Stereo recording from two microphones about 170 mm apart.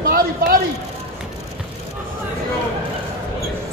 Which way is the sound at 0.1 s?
60° right (ahead or behind).